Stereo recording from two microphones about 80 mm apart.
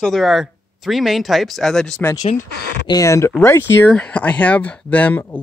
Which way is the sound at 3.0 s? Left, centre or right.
Left.